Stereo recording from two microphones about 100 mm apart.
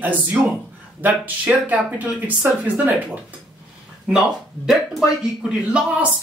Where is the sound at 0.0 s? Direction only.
15° right (ahead or behind).